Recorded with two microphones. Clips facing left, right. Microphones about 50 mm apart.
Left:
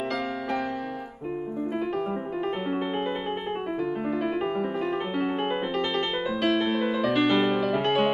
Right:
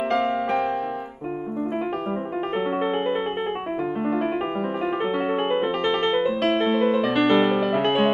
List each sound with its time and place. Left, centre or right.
5.5 s music: right